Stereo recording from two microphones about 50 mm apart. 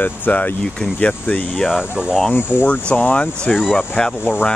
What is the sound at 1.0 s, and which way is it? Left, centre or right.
Speech, left.